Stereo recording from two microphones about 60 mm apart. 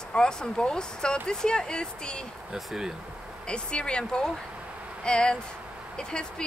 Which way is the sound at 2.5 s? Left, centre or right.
Centre.